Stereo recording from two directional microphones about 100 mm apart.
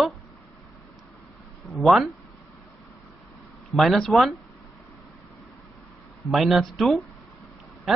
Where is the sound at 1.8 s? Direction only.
Centre (ahead or behind).